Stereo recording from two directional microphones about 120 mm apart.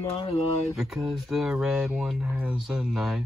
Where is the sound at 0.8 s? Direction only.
5° right (ahead or behind).